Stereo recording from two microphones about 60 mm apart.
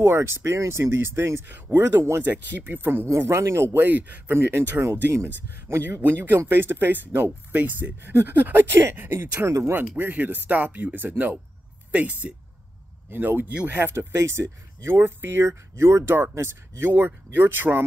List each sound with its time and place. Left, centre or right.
0.0 s speech: right
2.3 s speech: right
3.1 s speech: right
5.1 s speech: right
13.9 s speech: right
16.9 s speech: right